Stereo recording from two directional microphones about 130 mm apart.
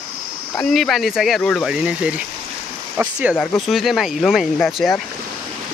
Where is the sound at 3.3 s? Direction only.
10° left (ahead or behind).